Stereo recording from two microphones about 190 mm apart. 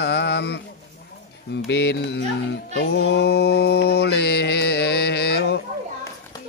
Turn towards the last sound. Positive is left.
turn(degrees=60)  # may be behind; listen again after turning